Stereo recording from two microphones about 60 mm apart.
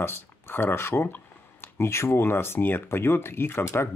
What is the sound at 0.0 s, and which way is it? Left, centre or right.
Speech, left.